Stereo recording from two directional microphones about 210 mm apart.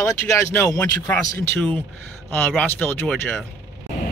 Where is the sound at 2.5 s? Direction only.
10° left (ahead or behind).